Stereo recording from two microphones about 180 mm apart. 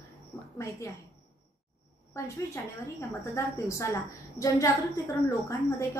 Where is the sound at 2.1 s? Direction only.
15° left (ahead or behind).